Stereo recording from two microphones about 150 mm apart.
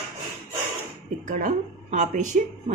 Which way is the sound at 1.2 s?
55° right (ahead or behind).